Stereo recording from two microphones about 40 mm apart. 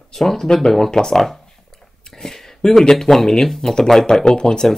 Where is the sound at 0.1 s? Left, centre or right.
Centre.